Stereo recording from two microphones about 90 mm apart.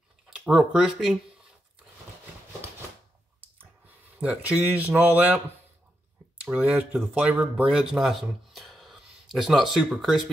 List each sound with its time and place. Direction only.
0.3 s speech: 10° right (ahead or behind)
3.5 s speech: 15° right (ahead or behind)
6.5 s speech: 15° right (ahead or behind)